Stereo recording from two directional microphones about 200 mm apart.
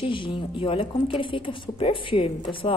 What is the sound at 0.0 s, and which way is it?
Speech, 25° left (ahead or behind).